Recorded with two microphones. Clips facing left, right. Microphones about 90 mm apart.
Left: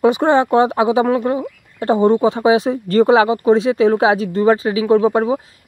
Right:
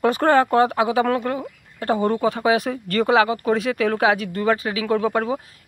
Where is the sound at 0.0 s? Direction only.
15° left (ahead or behind).